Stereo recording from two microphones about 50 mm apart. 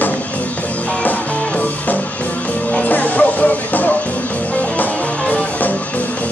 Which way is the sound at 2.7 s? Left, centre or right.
Left.